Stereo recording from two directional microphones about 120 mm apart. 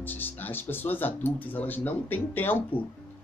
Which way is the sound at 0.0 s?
15° left (ahead or behind).